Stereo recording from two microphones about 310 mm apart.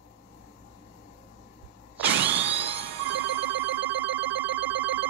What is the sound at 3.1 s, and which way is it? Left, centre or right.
Telephone, centre.